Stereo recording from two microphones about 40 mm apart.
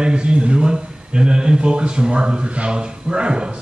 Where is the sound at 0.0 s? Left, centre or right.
Right.